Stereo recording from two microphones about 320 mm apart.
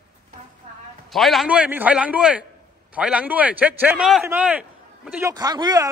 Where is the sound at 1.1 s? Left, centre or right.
Centre.